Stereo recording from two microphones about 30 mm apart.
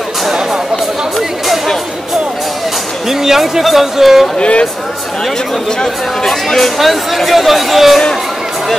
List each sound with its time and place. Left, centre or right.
3.1 s a man's voice: centre
4.4 s speech: left
6.2 s speech: centre
6.8 s speech: centre